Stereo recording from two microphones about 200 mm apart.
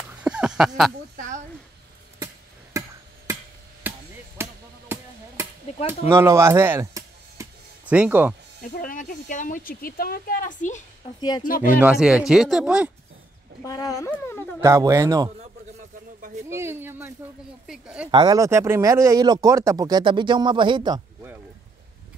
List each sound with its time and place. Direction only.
0.2 s a sound: 5° right (ahead or behind)
2.8 s chop: 15° right (ahead or behind)
4.4 s music: 10° right (ahead or behind)
5.9 s speech: 10° right (ahead or behind)
8.8 s speech: 40° left (ahead or behind)
11.1 s speech: 20° left (ahead or behind)
11.4 s speech: 45° left (ahead or behind)
11.8 s speech: 5° right (ahead or behind)
13.7 s speech: 15° left (ahead or behind)
14.1 s wail: 10° left (ahead or behind)
14.6 s speech: 15° right (ahead or behind)
16.4 s speech: 10° right (ahead or behind)
18.1 s speech: 20° right (ahead or behind)